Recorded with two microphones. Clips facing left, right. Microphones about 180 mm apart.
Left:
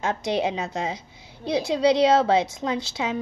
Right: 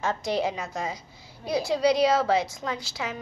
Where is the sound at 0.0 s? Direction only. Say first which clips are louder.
Left 2 dB; 20° left (ahead or behind).